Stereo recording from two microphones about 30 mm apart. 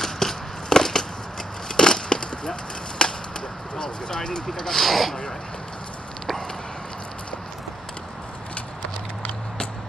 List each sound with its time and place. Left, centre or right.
0.0 s a sound: centre
3.0 s chop: left
3.7 s speech: left
4.6 s speech: centre